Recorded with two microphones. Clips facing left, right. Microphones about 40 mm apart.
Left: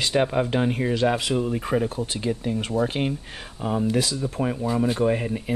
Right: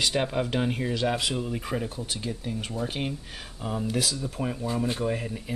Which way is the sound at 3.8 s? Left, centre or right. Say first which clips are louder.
Left 3 dB; left.